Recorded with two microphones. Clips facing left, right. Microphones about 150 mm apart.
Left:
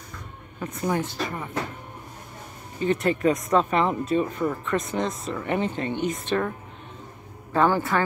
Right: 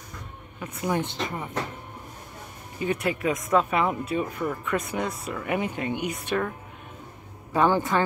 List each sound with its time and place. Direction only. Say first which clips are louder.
0.6 s speech: left 1 dB; 10° right (ahead or behind)
1.0 s speech: left 1 dB; 20° right (ahead or behind)
2.8 s speech: left 4 dB; 10° right (ahead or behind)
7.5 s speech: even; 15° right (ahead or behind)